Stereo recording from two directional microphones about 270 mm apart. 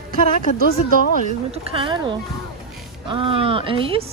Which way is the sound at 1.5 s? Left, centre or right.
Right.